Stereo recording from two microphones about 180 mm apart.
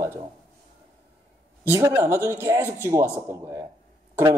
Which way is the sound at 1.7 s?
15° right (ahead or behind).